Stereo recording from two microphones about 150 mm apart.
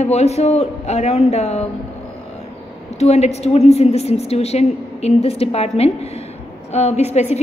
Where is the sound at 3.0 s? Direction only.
45° left (ahead or behind).